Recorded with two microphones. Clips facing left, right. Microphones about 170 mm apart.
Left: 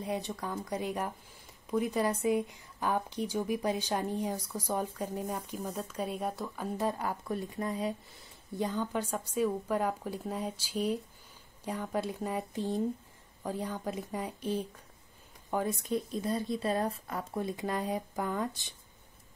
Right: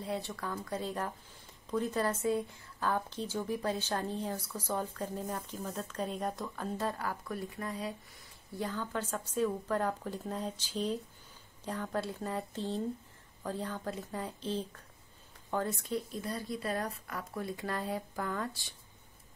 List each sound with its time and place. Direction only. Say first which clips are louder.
0.0 s a woman's voice: left 2 dB; 20° left (ahead or behind)